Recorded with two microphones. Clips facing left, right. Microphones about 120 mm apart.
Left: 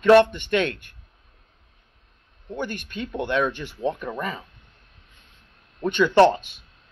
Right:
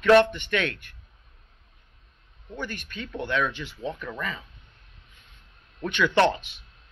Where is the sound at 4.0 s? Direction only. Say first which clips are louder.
Left 4 dB; 30° left (ahead or behind).